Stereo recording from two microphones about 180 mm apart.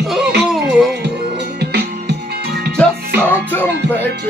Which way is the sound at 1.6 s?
65° right (ahead or behind).